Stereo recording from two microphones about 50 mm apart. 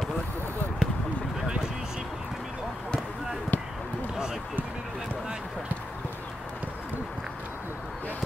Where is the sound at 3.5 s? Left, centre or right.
Left.